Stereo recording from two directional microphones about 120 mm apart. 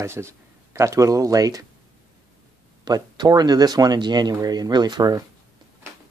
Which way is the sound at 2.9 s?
35° right (ahead or behind).